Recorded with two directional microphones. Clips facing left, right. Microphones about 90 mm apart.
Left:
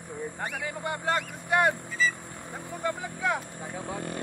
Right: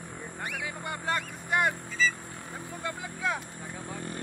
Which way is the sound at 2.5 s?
25° left (ahead or behind).